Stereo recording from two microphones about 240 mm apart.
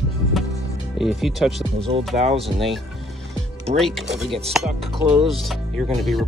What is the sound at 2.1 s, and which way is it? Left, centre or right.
Speech, right.